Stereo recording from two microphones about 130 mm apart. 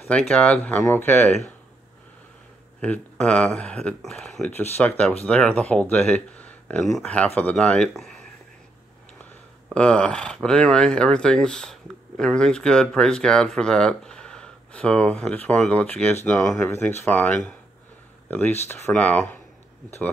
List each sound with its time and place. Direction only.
0.1 s speech: 10° left (ahead or behind)
2.8 s speech: 10° left (ahead or behind)
9.8 s speech: 10° left (ahead or behind)